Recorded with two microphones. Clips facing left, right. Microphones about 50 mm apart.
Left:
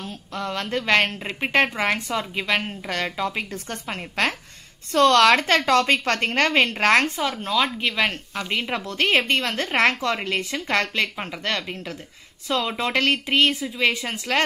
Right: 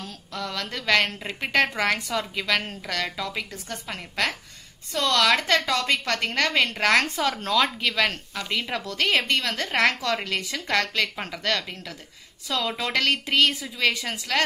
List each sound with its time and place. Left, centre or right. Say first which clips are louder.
0.0 s a woman's voice: left 3 dB; left
7.2 s speech: even; centre
7.8 s a woman's voice: left 1 dB; left
12.4 s a woman's voice: left 3 dB; left